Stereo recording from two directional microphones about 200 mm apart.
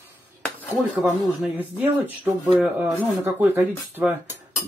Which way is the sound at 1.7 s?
10° right (ahead or behind).